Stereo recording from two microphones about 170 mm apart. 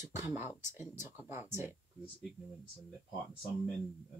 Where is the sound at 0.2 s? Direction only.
15° right (ahead or behind).